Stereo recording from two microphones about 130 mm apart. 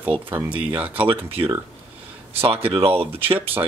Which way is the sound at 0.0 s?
10° right (ahead or behind).